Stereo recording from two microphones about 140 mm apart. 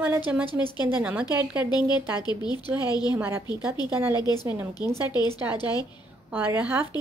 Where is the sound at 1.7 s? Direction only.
30° left (ahead or behind).